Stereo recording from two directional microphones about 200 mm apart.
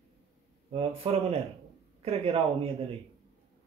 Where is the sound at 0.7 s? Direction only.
30° right (ahead or behind).